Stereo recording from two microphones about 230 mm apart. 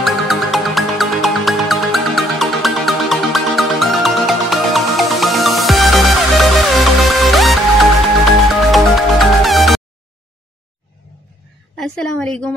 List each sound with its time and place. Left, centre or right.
0.0 s music: centre
8.7 s music: centre
11.7 s a woman's voice: centre